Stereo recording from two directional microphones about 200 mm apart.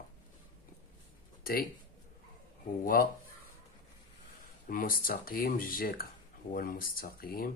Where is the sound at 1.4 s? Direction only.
45° left (ahead or behind).